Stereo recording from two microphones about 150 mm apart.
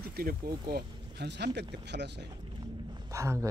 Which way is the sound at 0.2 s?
85° right.